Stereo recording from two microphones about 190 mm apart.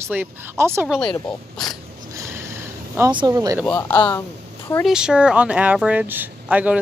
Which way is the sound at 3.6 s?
10° left (ahead or behind).